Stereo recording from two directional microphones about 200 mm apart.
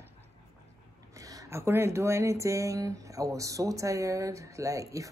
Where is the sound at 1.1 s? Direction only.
15° right (ahead or behind).